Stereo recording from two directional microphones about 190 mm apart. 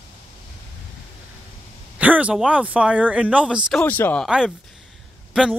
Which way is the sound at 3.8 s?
10° left (ahead or behind).